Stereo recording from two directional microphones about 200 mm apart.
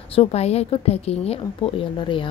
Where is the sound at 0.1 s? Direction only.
30° left (ahead or behind).